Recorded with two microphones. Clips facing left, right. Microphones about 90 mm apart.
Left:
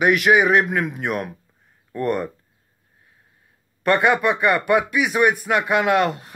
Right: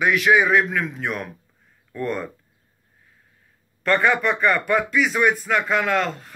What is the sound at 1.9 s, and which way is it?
Speech, 55° left (ahead or behind).